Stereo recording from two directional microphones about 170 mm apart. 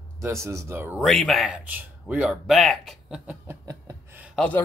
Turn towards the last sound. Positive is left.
turn(degrees=5)  # may be behind; listen again after turning